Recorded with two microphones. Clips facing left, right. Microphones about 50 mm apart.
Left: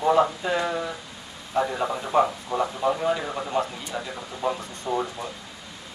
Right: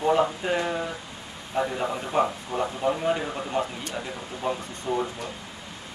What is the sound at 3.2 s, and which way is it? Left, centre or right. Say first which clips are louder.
Speech: left 1 dB; centre.